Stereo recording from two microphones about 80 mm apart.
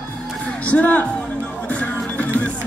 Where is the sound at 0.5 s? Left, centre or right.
Centre.